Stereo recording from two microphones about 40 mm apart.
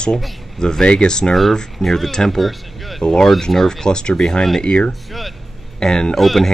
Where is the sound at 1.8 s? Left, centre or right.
Centre.